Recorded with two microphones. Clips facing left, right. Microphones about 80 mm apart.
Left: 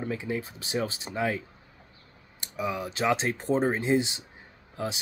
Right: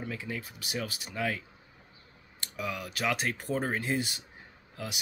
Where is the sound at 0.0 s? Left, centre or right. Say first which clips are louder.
Left 6 dB; left.